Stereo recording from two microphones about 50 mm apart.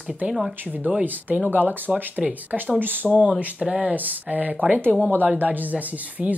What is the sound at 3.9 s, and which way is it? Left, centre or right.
Speech, right.